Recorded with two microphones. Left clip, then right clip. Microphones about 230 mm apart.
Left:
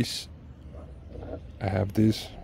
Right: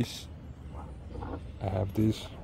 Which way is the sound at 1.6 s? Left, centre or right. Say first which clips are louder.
Left 5 dB; left.